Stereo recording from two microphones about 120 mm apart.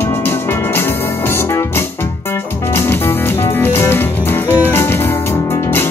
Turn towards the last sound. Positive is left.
turn(degrees=20)  # may be behind; listen again after turning